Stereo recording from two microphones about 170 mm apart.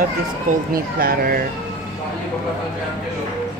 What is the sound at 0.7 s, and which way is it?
Speech, 60° right (ahead or behind).